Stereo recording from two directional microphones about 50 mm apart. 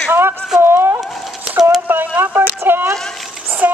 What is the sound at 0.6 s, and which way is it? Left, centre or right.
Speech, right.